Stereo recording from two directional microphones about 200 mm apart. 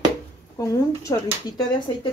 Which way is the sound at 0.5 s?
15° left (ahead or behind).